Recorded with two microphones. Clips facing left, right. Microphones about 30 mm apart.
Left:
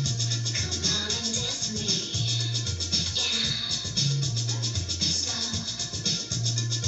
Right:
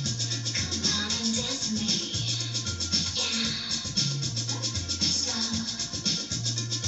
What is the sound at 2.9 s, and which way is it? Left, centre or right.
Music, left.